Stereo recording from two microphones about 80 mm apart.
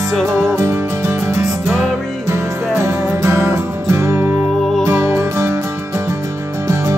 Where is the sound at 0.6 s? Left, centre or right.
Right.